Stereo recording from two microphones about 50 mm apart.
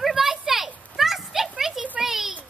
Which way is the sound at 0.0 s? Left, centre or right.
Centre.